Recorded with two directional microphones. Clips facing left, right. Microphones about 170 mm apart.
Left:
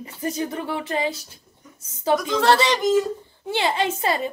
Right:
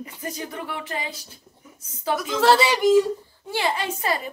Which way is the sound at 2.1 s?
5° right (ahead or behind).